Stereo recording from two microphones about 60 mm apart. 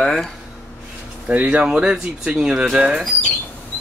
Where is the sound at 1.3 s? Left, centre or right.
Right.